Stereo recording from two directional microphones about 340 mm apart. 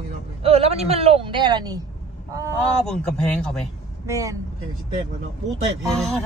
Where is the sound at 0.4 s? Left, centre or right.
Centre.